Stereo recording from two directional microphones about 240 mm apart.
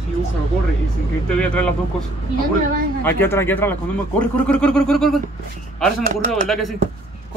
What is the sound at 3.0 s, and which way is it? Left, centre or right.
Speech, centre.